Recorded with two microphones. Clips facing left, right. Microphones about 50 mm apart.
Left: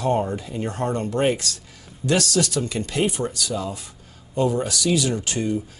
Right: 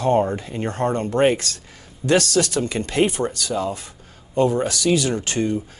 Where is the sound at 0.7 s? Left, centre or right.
Right.